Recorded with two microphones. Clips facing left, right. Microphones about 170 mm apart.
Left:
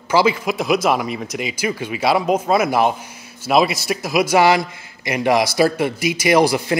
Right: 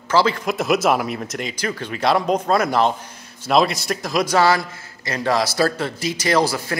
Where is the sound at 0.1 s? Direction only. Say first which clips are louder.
Left 2 dB; 10° left (ahead or behind).